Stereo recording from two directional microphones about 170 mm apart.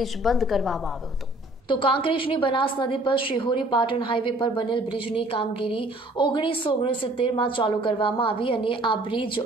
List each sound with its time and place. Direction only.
0.0 s a woman's voice: centre (ahead or behind)
1.7 s a woman's voice: 30° left (ahead or behind)